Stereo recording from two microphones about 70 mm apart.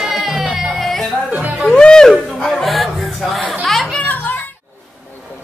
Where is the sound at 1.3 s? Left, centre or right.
Right.